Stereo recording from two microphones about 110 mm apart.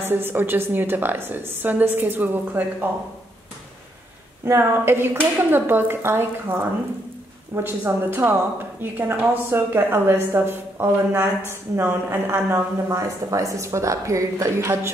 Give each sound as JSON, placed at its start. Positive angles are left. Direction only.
{"t": 0.1, "sound": "a woman's voice", "side_deg": -20}
{"t": 4.5, "sound": "a woman's voice", "side_deg": -20}